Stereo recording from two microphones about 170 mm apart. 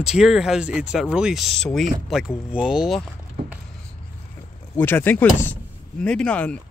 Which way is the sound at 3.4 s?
50° right (ahead or behind).